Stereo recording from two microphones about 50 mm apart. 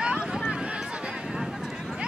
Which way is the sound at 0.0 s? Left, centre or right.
Centre.